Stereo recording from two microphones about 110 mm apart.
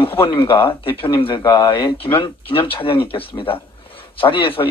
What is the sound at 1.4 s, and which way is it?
Speech, 40° left (ahead or behind).